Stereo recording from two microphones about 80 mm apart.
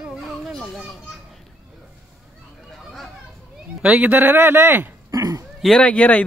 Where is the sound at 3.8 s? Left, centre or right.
Centre.